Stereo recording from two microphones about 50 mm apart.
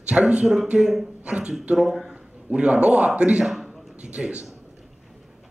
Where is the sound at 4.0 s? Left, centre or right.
Right.